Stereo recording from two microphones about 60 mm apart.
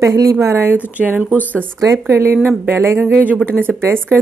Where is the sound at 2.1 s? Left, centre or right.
Right.